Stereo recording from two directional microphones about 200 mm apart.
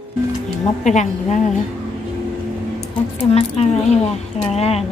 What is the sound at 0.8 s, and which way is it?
Speech, 35° left (ahead or behind).